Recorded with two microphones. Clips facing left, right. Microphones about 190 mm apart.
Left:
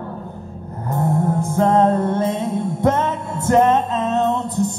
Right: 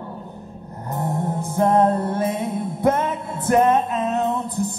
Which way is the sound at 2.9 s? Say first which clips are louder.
Left 2 dB; 15° right (ahead or behind).